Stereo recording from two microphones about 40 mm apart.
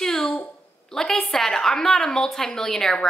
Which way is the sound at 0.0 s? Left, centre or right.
Centre.